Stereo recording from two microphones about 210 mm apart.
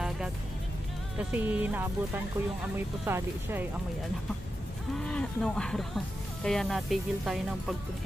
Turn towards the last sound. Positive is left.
turn(degrees=0)  # may be behind; listen again after turning